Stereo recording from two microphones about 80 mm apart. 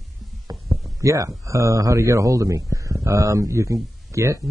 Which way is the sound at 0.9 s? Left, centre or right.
Right.